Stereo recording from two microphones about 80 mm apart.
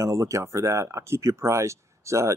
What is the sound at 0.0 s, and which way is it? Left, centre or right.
Speech, right.